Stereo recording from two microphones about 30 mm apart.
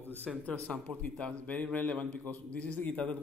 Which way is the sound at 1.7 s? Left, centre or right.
Left.